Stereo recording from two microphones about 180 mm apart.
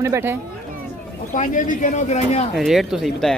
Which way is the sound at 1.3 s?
45° left (ahead or behind).